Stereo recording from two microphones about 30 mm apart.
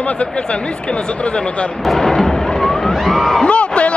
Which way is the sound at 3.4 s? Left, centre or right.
Left.